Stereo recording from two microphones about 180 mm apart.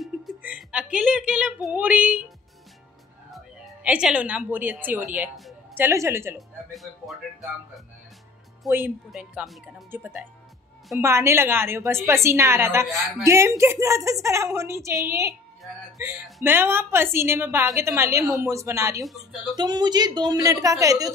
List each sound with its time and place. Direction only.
0.0 s a woman's voice: 5° right (ahead or behind)
6.3 s a woman's voice: centre (ahead or behind); by 15.3 s 15° right (ahead or behind)
16.4 s a woman's voice: 10° right (ahead or behind)